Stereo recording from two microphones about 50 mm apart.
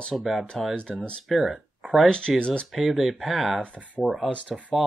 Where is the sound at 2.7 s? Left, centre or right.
Centre.